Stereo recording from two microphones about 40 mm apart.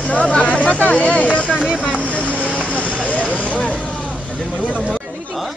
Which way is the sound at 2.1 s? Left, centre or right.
Left.